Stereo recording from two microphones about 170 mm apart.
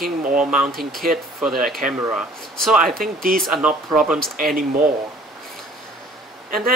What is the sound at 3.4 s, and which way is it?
Speech, centre (ahead or behind).